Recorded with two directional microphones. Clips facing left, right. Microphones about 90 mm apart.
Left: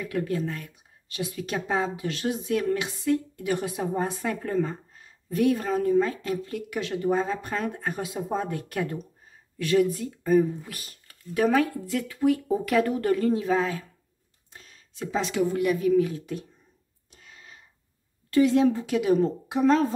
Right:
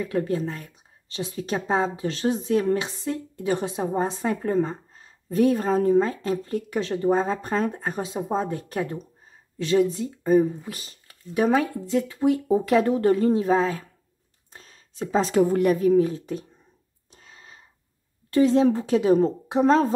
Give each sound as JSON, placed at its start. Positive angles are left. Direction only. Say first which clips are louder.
{"t": 0.0, "sound": "a woman's voice", "louder": "right 3 dB", "side_deg": -30}
{"t": 17.1, "sound": "a sound", "louder": "right 1 dB", "side_deg": -35}
{"t": 18.3, "sound": "a woman's voice", "louder": "right 2 dB", "side_deg": -35}